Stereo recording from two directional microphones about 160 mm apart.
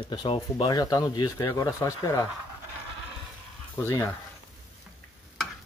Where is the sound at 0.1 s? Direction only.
25° left (ahead or behind).